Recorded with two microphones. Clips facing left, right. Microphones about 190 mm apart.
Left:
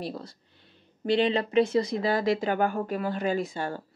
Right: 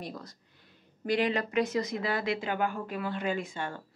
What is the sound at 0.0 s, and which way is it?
Speech, 30° left (ahead or behind).